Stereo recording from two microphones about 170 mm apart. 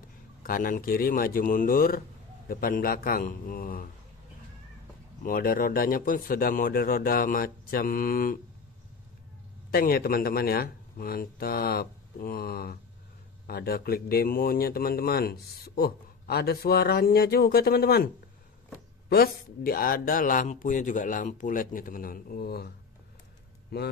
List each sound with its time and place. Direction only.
0.4 s a man's voice: 55° left (ahead or behind)
5.2 s a man's voice: 55° left (ahead or behind)
9.7 s a man's voice: 60° left (ahead or behind)
19.0 s a man's voice: 65° left (ahead or behind)
23.7 s a man's voice: 65° left (ahead or behind)